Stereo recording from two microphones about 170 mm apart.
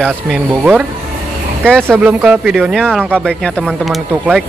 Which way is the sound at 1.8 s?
10° right (ahead or behind).